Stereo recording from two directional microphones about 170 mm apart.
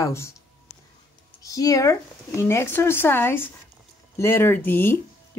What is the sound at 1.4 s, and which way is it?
Speech, 20° left (ahead or behind).